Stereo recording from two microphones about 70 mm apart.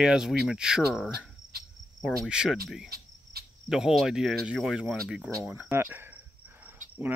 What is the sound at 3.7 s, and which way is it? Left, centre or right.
Speech, centre.